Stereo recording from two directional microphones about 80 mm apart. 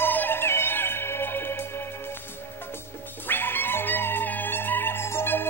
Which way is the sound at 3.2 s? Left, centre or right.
Left.